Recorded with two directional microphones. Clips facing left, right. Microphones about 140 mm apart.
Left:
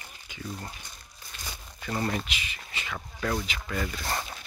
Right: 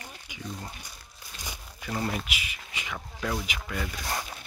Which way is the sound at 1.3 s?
10° right (ahead or behind).